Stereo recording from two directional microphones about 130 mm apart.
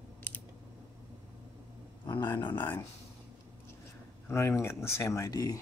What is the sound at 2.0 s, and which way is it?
Speech, 35° left (ahead or behind).